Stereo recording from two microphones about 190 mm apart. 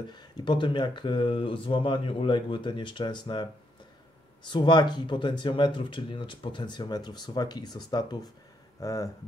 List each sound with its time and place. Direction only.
0.1 s speech: 25° left (ahead or behind)
4.5 s speech: 25° left (ahead or behind)